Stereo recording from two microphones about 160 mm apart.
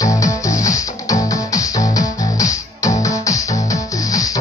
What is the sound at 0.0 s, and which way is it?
Music, 20° left (ahead or behind).